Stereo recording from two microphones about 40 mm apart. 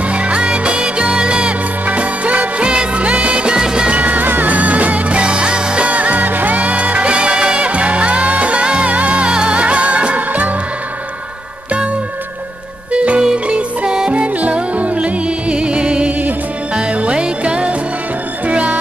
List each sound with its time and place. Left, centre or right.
0.1 s music: right
1.9 s music: right; by 3.9 s centre
3.9 s music: right
5.9 s music: right
12.9 s music: right
13.2 s music: centre
14.1 s music: right
16.1 s music: right
16.7 s music: right